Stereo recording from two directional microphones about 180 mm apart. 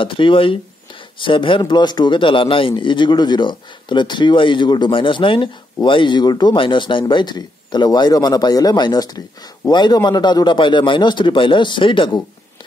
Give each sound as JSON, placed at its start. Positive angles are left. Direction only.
{"t": 0.0, "sound": "a man's voice", "side_deg": 30}